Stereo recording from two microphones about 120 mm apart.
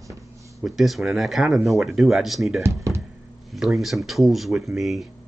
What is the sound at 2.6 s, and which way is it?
Speech, 20° right (ahead or behind).